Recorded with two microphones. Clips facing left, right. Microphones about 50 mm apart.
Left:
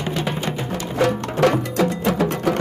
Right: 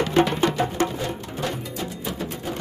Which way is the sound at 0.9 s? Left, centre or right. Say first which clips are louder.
Left 10 dB; left.